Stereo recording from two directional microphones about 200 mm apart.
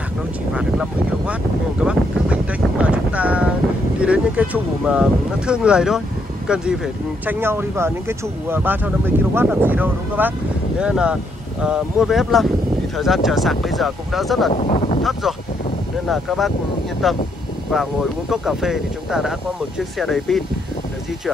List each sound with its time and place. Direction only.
0.6 s speech: 5° right (ahead or behind)
1.8 s a sound: 5° right (ahead or behind)
4.0 s speech: 5° right (ahead or behind)
14.5 s speech: 30° left (ahead or behind)
16.1 s speech: centre (ahead or behind)
18.3 s speech: centre (ahead or behind)